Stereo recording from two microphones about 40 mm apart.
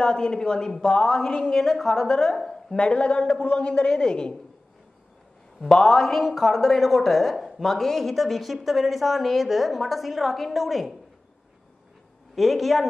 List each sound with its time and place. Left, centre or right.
0.0 s a woman's voice: centre
2.8 s a woman's voice: left
5.7 s a woman's voice: centre
12.4 s a woman's voice: centre